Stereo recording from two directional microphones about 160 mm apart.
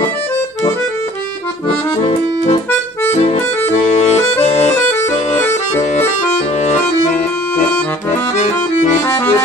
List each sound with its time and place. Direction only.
3.9 s accordion: 45° left (ahead or behind)
9.0 s accordion: 15° left (ahead or behind)